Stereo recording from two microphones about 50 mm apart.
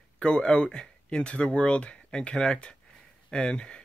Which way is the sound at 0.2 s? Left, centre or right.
Centre.